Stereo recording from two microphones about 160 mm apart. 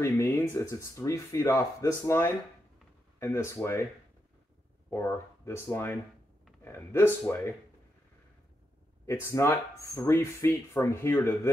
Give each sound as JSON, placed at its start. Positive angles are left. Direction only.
{"t": 0.0, "sound": "speech", "side_deg": 15}
{"t": 4.9, "sound": "speech", "side_deg": 15}
{"t": 9.0, "sound": "speech", "side_deg": 20}